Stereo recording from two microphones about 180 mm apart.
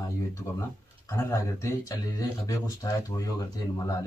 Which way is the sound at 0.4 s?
15° left (ahead or behind).